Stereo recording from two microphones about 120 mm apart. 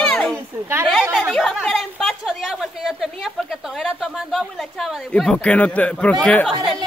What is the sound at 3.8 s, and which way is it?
Speech, centre (ahead or behind).